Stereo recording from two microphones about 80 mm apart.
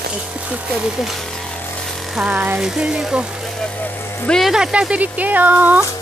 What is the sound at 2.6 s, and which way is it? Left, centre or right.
Speech, centre.